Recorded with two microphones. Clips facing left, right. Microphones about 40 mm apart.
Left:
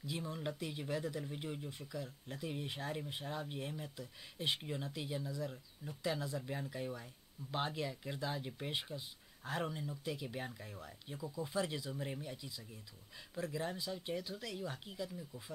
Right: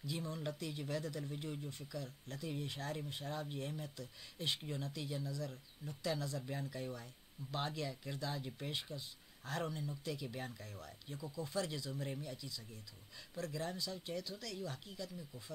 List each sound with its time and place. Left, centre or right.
0.0 s speech: centre